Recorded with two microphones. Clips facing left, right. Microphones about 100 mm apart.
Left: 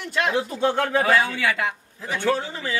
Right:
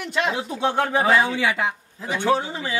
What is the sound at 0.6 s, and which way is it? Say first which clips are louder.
A man's voice: right 2 dB; 20° right (ahead or behind).